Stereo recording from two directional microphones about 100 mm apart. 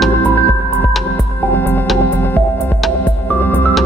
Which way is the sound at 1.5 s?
20° left (ahead or behind).